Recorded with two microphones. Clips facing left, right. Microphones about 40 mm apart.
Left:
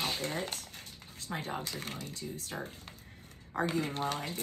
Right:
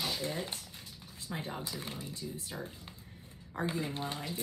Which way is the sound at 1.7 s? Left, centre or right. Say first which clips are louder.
Left 1 dB; left.